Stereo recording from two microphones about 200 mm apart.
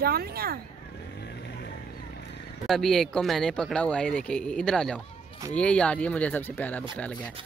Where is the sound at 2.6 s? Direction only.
Centre (ahead or behind).